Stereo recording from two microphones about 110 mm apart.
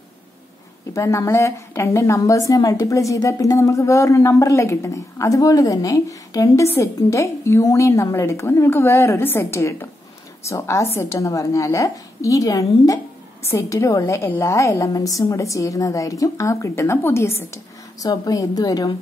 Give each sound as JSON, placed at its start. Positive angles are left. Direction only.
{"t": 0.9, "sound": "a woman's voice", "side_deg": 30}
{"t": 18.0, "sound": "a woman's voice", "side_deg": 35}